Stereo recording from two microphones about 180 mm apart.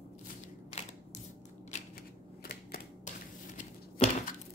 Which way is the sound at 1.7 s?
45° left (ahead or behind).